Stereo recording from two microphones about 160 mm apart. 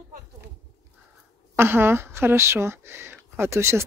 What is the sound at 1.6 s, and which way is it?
Speech, 15° right (ahead or behind).